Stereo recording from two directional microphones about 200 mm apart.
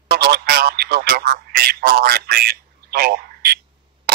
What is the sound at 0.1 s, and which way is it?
Radio, 50° right (ahead or behind).